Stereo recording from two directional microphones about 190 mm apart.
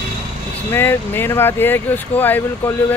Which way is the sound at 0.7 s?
10° left (ahead or behind).